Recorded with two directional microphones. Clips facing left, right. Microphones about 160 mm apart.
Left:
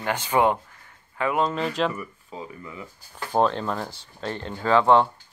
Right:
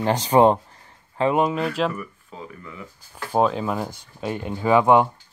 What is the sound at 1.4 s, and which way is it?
Speech, 5° right (ahead or behind).